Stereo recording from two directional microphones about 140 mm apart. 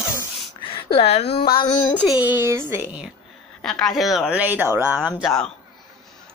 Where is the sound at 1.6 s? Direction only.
20° left (ahead or behind).